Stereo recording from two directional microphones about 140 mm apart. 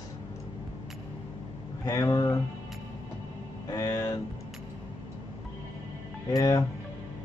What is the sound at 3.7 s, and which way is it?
Speech, 25° left (ahead or behind).